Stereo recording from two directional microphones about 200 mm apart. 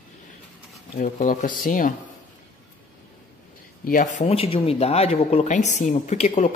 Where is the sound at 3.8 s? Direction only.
40° left (ahead or behind).